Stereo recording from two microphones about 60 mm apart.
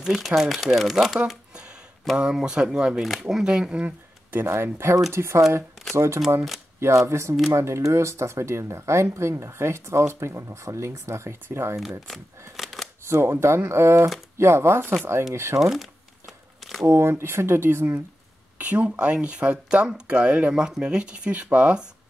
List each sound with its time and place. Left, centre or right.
0.0 s speech: centre
1.5 s a sound: centre
2.1 s speech: centre
3.8 s a sound: right
4.5 s speech: right
12.5 s shuffling cards: centre
13.1 s speech: right
15.3 s speech: right
15.7 s crumpling: centre
16.8 s speech: right
18.6 s speech: right